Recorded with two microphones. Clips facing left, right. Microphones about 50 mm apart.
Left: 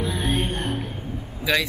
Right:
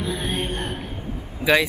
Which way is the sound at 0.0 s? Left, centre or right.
Centre.